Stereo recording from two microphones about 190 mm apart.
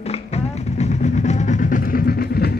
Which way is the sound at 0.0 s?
35° left (ahead or behind).